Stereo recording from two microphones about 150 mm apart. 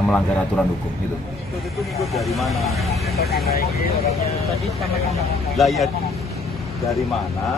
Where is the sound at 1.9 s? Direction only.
Centre (ahead or behind).